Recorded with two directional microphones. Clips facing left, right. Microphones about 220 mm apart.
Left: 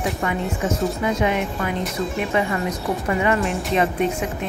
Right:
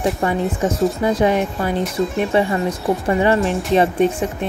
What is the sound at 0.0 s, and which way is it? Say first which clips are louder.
Speech: right 5 dB; 30° right (ahead or behind).